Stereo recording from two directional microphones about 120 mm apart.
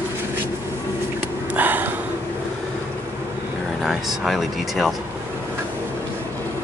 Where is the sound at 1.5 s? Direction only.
15° right (ahead or behind).